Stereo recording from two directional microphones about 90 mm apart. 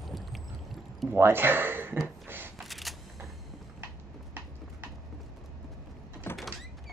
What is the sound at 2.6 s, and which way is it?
Single-lens reflex camera, centre (ahead or behind).